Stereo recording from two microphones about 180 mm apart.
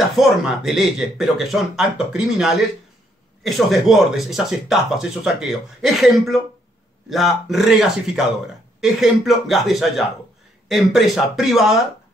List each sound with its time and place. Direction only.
0.1 s speech: centre (ahead or behind)
8.8 s speech: centre (ahead or behind)